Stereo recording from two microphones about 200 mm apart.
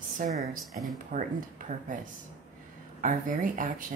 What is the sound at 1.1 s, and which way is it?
Speech, 40° right (ahead or behind).